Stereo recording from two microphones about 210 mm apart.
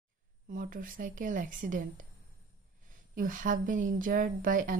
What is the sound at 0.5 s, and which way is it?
Speech, 40° right (ahead or behind).